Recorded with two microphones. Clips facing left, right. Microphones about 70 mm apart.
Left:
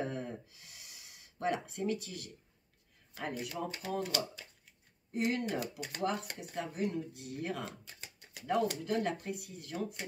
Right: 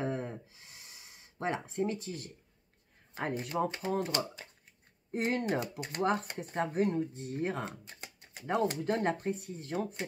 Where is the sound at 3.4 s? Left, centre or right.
Right.